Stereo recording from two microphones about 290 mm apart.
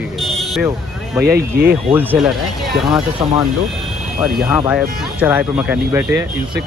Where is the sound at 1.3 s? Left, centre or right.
Right.